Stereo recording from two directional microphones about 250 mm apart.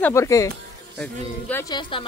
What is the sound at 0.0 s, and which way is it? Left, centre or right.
Speech, centre.